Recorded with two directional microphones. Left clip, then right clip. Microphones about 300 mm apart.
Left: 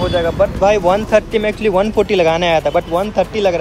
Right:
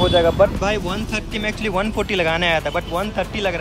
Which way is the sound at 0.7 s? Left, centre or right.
Centre.